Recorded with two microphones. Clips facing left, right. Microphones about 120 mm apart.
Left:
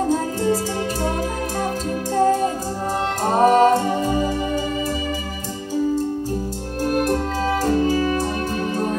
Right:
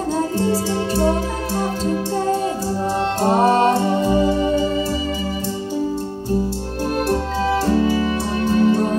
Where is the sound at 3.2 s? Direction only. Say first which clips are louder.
Left 1 dB; 35° right (ahead or behind).